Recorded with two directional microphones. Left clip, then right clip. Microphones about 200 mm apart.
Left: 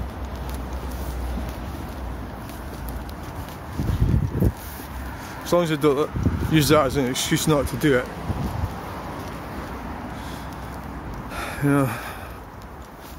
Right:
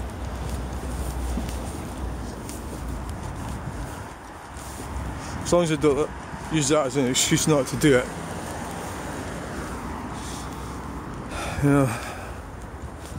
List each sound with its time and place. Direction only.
5.5 s speech: centre (ahead or behind)
6.5 s speech: 20° left (ahead or behind)
7.0 s speech: 5° right (ahead or behind)
11.3 s a sound: 5° right (ahead or behind)